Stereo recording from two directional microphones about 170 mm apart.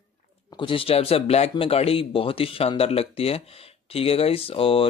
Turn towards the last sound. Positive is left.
turn(degrees=35)  # may be behind; listen again after turning